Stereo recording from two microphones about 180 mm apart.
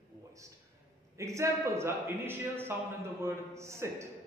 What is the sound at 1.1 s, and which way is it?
Speech, 15° right (ahead or behind).